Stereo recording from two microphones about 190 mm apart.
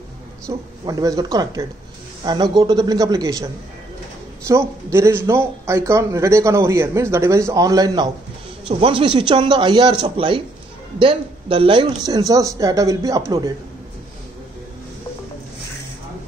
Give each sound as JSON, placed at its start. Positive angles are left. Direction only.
{"t": 0.5, "sound": "speech", "side_deg": -20}
{"t": 4.5, "sound": "a man's voice", "side_deg": -15}